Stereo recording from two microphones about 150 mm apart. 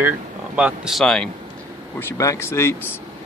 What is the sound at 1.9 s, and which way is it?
Speech, 20° left (ahead or behind).